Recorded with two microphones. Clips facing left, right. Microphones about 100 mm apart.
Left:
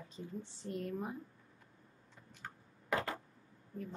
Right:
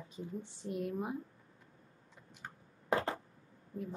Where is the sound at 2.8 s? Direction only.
30° right (ahead or behind).